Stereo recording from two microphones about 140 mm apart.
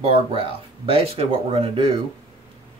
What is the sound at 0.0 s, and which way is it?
Speech, 40° right (ahead or behind).